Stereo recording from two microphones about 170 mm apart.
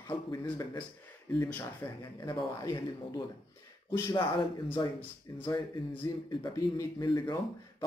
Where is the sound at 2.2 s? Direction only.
20° left (ahead or behind).